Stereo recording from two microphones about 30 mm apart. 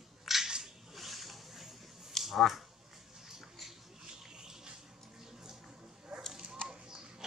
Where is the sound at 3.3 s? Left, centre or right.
Centre.